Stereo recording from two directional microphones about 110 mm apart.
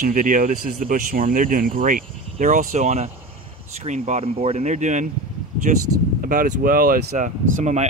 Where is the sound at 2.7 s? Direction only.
90° right.